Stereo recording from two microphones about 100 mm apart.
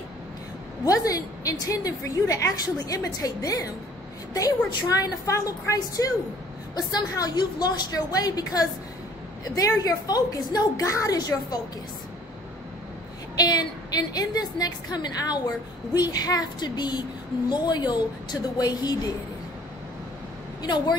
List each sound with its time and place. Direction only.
0.8 s a woman's voice: 35° left (ahead or behind)
13.4 s a woman's voice: 40° left (ahead or behind)
20.6 s a woman's voice: 45° left (ahead or behind)